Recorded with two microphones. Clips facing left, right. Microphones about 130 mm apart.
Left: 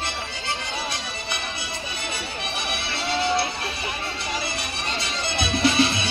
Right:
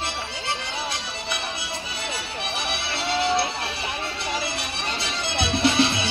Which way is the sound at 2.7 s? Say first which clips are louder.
Even; 5° right (ahead or behind).